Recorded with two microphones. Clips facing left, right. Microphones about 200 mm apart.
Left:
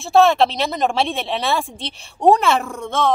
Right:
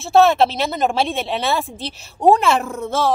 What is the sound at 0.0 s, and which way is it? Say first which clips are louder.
Speech: even; centre (ahead or behind).